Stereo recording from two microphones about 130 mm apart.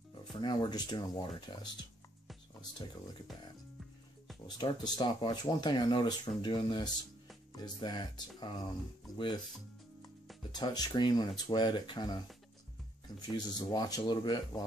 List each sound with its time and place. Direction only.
0.3 s speech: 35° left (ahead or behind)
4.5 s speech: 35° left (ahead or behind)
10.5 s speech: 30° left (ahead or behind)
13.3 s speech: 35° left (ahead or behind)